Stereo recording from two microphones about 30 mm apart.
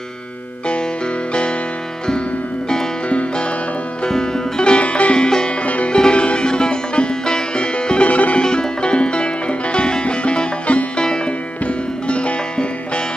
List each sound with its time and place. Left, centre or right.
1.3 s music: left
3.1 s music: left
4.1 s music: left
4.8 s music: left
5.1 s music: left
5.6 s music: left
5.9 s music: left
8.1 s music: left
8.4 s music: left
11.6 s music: left